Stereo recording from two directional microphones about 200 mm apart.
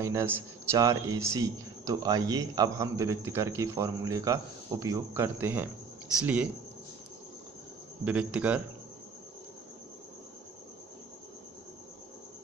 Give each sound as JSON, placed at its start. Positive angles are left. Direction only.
{"t": 0.0, "sound": "a man's voice", "side_deg": -15}
{"t": 8.0, "sound": "a man's voice", "side_deg": -5}